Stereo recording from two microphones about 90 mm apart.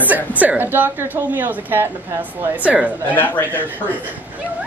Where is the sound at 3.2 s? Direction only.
20° left (ahead or behind).